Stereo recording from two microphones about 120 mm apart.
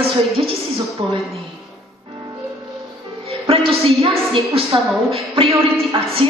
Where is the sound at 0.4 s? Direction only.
45° right (ahead or behind).